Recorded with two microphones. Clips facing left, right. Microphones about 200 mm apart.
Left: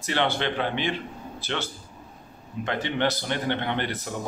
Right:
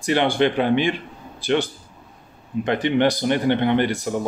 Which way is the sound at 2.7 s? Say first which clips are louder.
Right 7 dB; 15° right (ahead or behind).